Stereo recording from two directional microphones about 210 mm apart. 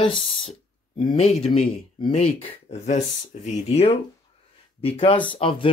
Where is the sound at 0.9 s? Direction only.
25° left (ahead or behind).